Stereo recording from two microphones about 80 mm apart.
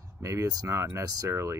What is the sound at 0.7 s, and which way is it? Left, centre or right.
Speech, right.